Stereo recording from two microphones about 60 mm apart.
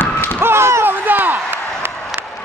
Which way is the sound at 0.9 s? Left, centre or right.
Right.